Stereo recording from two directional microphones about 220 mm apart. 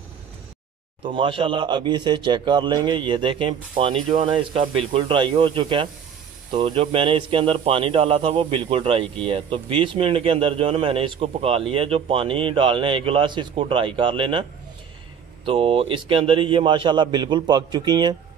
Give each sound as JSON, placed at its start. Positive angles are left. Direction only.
{"t": 1.0, "sound": "a man's voice", "side_deg": -25}
{"t": 15.4, "sound": "a man's voice", "side_deg": -25}